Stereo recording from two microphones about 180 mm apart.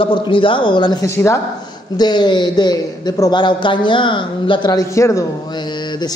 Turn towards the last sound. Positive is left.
turn(degrees=25)  # may be behind; listen again after turning